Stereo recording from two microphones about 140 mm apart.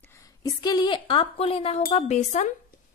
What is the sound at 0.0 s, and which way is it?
Speech, 20° left (ahead or behind).